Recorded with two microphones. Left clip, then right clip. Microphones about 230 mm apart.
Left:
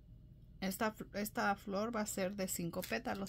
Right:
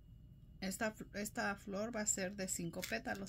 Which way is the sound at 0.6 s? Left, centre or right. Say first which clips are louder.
Left 3 dB; left.